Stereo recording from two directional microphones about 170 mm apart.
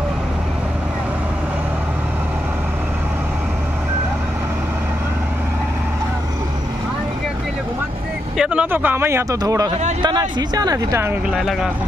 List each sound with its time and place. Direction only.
8.4 s speech: 5° right (ahead or behind)
11.3 s speech: 5° right (ahead or behind)